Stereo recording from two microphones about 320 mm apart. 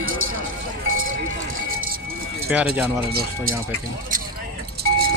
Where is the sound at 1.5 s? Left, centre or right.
Right.